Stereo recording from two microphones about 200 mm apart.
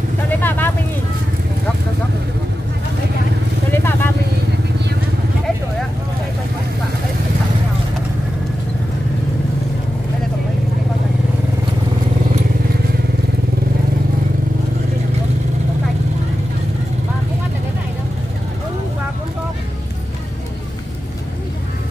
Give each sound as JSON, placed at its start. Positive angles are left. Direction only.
{"t": 0.3, "sound": "vehicle", "side_deg": 10}
{"t": 3.7, "sound": "vehicle", "side_deg": 10}